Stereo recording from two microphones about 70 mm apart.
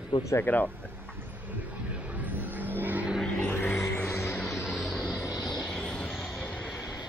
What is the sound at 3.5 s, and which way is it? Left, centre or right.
Music, left.